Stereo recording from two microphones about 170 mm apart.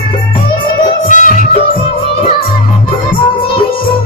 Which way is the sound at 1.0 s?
50° left (ahead or behind).